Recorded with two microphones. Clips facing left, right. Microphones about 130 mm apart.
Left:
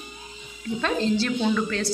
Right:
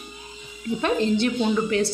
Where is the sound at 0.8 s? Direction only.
15° right (ahead or behind).